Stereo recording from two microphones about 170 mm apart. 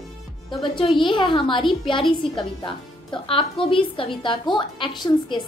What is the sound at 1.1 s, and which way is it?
Speech, 30° left (ahead or behind).